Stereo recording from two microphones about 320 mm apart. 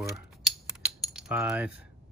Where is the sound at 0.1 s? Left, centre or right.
Centre.